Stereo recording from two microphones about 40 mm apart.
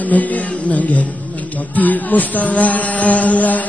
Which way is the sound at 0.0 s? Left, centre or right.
Left.